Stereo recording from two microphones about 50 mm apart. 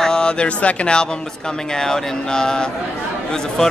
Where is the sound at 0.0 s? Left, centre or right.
Centre.